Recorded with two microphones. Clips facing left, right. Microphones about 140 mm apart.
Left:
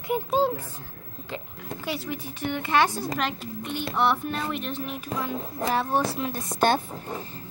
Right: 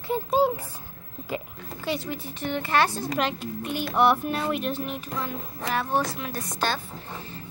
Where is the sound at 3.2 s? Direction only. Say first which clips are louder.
Right 2 dB; centre (ahead or behind).